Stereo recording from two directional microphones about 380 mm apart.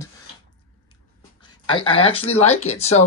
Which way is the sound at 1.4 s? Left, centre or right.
Centre.